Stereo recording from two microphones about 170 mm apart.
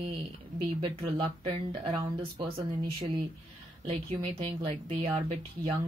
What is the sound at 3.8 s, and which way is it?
Speech, 35° right (ahead or behind).